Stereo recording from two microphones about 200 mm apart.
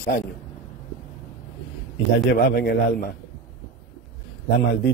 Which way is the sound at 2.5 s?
50° left (ahead or behind).